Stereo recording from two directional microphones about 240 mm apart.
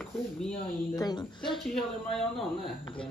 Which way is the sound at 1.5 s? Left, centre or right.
Centre.